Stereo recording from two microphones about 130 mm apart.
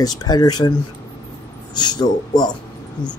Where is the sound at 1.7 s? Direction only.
35° left (ahead or behind).